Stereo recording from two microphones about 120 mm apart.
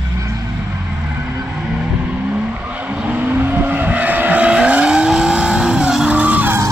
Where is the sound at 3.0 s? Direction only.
15° right (ahead or behind).